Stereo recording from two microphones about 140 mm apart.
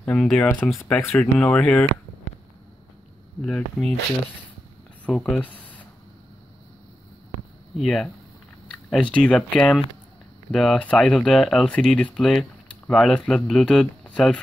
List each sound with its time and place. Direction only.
0.0 s speech: 5° left (ahead or behind)
3.4 s speech: 5° left (ahead or behind)
5.0 s speech: 10° left (ahead or behind)
7.7 s speech: centre (ahead or behind)